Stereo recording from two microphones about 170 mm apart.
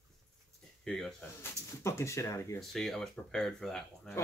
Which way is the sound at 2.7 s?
Centre (ahead or behind).